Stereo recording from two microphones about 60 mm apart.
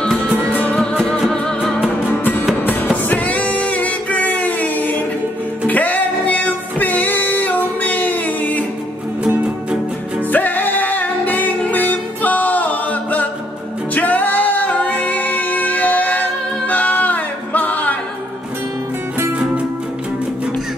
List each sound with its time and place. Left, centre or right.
3.1 s music: left
10.3 s music: left